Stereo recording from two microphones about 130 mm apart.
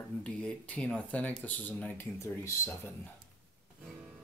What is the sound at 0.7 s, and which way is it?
Speech, 10° left (ahead or behind).